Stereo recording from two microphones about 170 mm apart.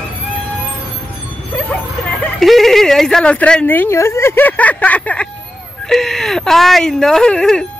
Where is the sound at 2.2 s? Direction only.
Centre (ahead or behind).